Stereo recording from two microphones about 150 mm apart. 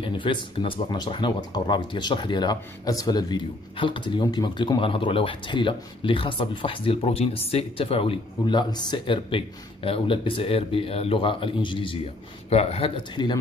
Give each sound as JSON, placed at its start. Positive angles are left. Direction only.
{"t": 0.0, "sound": "speech", "side_deg": 35}